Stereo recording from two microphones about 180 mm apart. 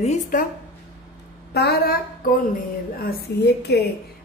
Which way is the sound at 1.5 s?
60° left (ahead or behind).